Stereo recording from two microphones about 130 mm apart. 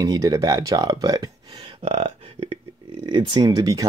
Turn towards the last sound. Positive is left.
turn(degrees=-30)  # may be behind; listen again after turning